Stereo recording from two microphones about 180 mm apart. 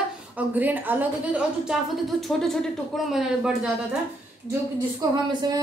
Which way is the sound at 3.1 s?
5° right (ahead or behind).